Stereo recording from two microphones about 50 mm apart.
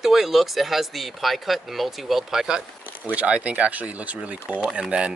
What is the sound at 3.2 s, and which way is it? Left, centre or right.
Speech, right.